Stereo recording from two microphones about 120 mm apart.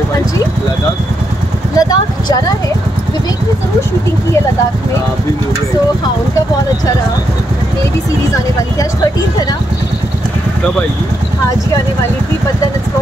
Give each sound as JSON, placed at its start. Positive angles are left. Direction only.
{"t": 1.8, "sound": "speech", "side_deg": 30}